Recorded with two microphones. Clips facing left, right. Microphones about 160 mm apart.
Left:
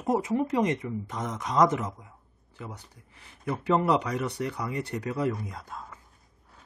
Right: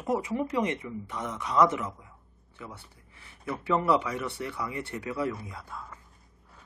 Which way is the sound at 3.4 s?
35° left (ahead or behind).